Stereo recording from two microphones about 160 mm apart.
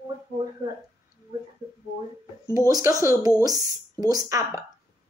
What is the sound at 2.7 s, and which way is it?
Speech, 20° right (ahead or behind).